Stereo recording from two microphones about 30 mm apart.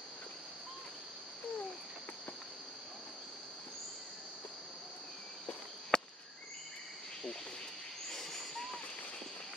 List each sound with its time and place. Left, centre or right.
5.9 s cricket: left
8.1 s owl: centre